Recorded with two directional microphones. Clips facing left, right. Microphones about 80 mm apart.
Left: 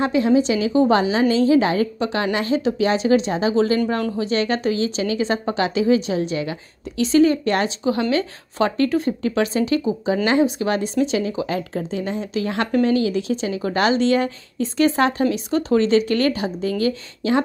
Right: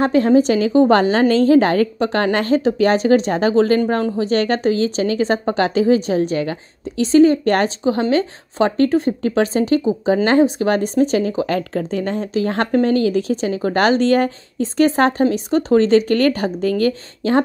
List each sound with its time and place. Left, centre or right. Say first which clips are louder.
0.0 s a woman's voice: right 4 dB; right
7.4 s a woman's voice: right 4 dB; right
7.8 s a woman's voice: right 3 dB; right
11.4 s a woman's voice: right 4 dB; right
12.4 s a woman's voice: right 3 dB; right